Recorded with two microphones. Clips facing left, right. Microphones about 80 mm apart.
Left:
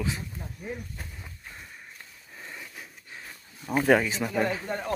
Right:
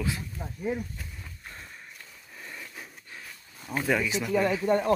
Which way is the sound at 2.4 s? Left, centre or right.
Centre.